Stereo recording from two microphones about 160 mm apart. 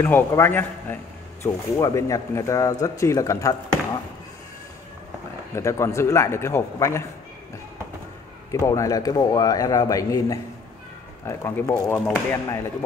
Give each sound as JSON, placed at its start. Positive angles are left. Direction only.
{"t": 0.0, "sound": "a man's voice", "side_deg": 15}
{"t": 5.5, "sound": "a man's voice", "side_deg": 15}
{"t": 8.5, "sound": "a man's voice", "side_deg": 20}